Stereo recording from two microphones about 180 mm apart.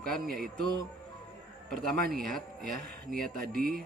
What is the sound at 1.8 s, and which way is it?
Speech, centre (ahead or behind).